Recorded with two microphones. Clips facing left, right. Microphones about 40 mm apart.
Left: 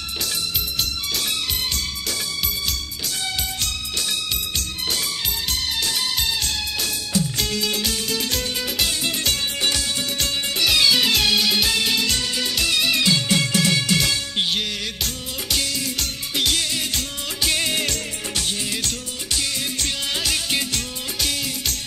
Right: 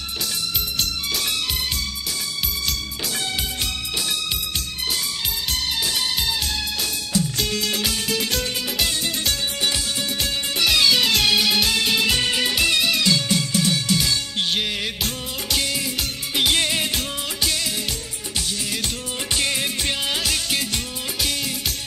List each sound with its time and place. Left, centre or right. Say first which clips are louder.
7.7 s music: right 1 dB; centre
10.6 s music: even; centre
12.2 s music: right 3 dB; right
12.5 s music: even; centre
12.8 s music: even; centre
13.3 s music: left 2 dB; left
15.7 s music: right 1 dB; centre
16.5 s music: right 3 dB; right
19.3 s music: right 3 dB; right
20.2 s music: even; centre